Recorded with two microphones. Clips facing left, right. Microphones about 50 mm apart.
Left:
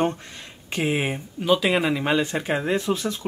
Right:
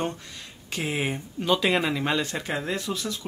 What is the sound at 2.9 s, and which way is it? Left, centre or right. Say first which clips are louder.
Speech: left 6 dB; left.